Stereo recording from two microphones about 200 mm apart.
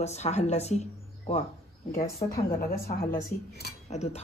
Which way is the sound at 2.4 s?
45° left (ahead or behind).